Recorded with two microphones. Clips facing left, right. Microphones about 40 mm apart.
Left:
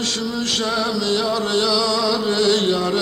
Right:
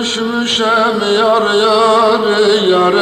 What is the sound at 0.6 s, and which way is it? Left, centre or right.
Music, right.